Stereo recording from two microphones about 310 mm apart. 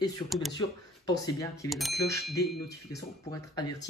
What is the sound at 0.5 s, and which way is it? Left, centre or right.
Speech, centre.